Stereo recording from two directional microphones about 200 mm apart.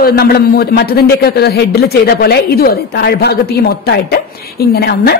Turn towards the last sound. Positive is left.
turn(degrees=55)  # may be behind; listen again after turning